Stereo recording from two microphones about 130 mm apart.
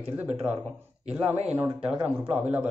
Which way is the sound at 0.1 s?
10° right (ahead or behind).